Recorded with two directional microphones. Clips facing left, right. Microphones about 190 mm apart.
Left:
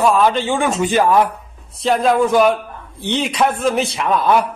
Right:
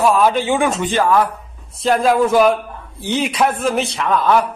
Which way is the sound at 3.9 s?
10° left (ahead or behind).